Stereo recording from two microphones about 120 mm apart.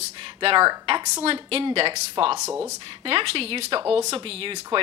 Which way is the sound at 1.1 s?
55° right (ahead or behind).